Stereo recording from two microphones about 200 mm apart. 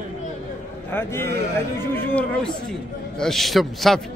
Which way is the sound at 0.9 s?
10° left (ahead or behind).